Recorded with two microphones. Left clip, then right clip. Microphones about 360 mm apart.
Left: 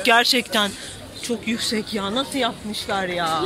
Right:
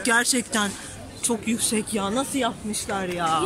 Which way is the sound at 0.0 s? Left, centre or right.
Centre.